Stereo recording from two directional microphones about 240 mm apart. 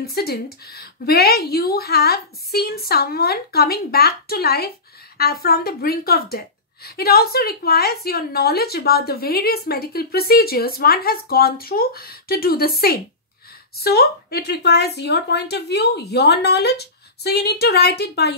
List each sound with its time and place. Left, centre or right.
0.0 s speech: left